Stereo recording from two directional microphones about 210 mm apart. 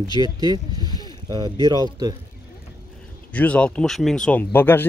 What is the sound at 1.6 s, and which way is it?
Speech, 20° right (ahead or behind).